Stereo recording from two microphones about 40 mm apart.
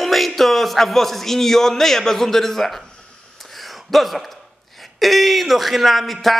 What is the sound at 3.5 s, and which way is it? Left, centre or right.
Gasp, centre.